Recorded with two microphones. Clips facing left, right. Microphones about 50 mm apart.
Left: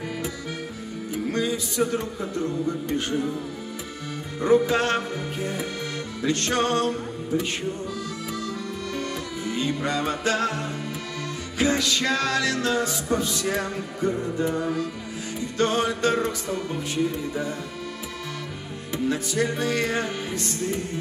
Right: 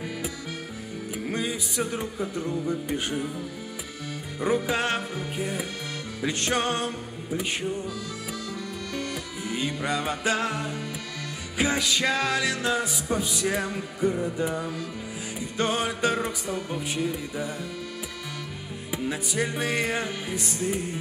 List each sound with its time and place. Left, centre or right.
1.1 s music: centre
4.6 s music: centre
9.4 s music: centre
18.9 s music: centre